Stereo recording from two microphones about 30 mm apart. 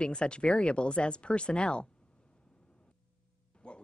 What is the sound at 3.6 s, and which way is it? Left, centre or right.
Music, left.